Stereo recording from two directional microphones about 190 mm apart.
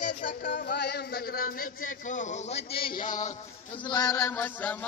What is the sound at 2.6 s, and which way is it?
Speech, 55° left (ahead or behind).